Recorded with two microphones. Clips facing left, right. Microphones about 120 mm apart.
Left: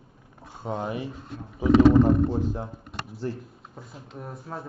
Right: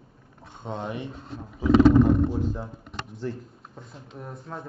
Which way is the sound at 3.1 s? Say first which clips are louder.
Left 1 dB; 5° left (ahead or behind).